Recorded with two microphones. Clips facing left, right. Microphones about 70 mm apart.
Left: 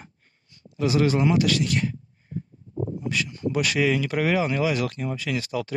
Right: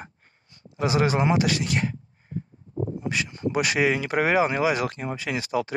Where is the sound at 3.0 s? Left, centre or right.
Right.